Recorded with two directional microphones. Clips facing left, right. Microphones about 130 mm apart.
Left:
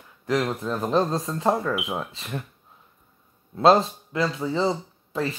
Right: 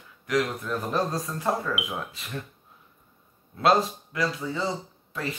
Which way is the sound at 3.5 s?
25° left (ahead or behind).